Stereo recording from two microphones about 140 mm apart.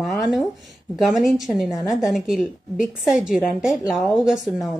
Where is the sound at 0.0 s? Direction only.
Centre (ahead or behind).